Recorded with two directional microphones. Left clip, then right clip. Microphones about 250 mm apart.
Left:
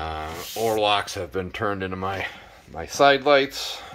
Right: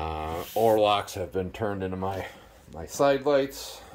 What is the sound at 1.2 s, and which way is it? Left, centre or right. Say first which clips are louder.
Speech: left 3 dB; left.